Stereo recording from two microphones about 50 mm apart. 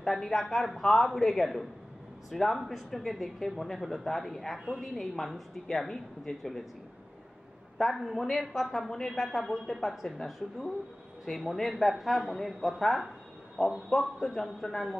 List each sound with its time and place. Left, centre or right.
0.0 s a woman's voice: centre
7.7 s a woman's voice: centre